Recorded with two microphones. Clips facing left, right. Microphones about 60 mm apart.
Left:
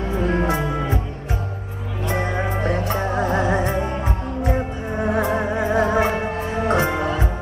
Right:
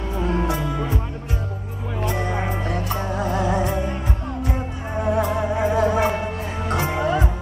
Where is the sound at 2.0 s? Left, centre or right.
Left.